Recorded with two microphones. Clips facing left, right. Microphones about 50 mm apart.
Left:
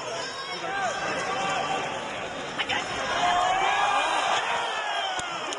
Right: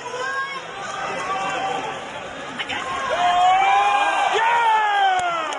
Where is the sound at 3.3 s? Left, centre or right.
Right.